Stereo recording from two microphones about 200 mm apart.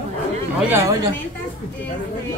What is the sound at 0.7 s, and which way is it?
Speech, 10° right (ahead or behind).